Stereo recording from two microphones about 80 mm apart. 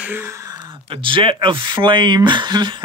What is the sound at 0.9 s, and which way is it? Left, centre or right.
Speech, right.